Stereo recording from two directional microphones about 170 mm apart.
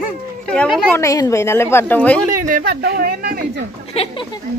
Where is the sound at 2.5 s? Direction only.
50° right (ahead or behind).